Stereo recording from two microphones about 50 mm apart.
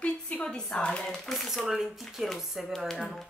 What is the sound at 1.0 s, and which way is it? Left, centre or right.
Speech, centre.